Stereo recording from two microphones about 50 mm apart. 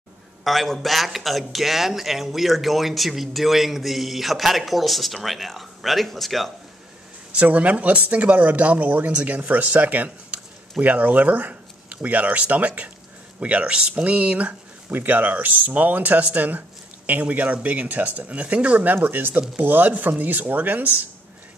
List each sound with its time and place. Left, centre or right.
0.4 s a man's voice: centre
7.4 s speech: right
14.9 s speech: right
18.9 s speech: right